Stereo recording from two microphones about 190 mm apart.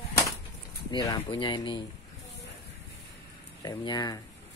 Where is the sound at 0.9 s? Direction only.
20° left (ahead or behind).